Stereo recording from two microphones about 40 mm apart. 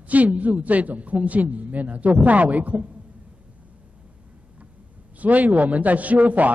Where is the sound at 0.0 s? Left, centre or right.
Right.